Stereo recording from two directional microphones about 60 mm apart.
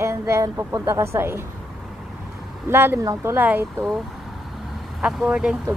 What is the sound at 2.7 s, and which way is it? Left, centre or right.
Speech, right.